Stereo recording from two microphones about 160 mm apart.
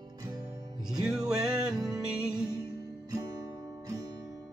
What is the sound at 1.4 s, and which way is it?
Music, 5° right (ahead or behind).